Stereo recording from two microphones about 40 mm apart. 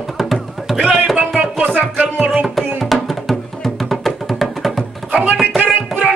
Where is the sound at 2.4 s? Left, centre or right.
Centre.